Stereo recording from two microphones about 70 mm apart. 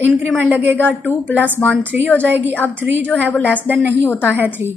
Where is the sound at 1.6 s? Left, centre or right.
Left.